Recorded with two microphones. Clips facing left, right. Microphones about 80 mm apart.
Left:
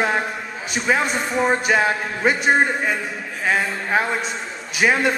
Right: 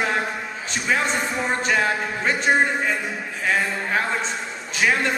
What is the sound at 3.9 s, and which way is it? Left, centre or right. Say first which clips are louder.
A man's voice: left 4 dB; centre.